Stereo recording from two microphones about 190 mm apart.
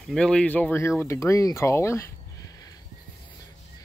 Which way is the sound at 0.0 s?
5° left (ahead or behind).